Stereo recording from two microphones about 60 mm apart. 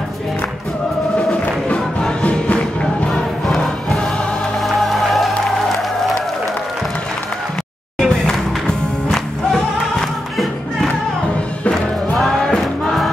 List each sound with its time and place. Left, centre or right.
1.1 s music: left
3.6 s music: centre
8.0 s music: centre
12.2 s music: centre